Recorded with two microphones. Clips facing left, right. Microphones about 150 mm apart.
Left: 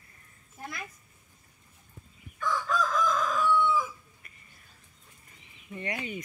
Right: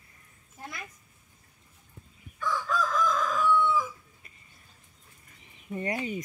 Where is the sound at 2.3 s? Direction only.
Centre (ahead or behind).